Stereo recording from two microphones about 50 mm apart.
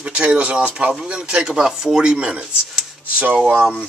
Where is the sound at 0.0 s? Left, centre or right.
Right.